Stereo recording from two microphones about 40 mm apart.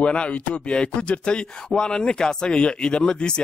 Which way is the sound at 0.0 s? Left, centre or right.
Left.